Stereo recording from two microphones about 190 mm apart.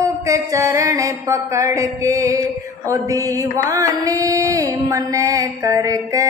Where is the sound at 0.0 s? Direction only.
15° right (ahead or behind).